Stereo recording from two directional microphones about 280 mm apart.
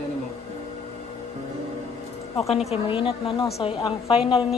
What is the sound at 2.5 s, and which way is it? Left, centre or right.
A woman's voice, left.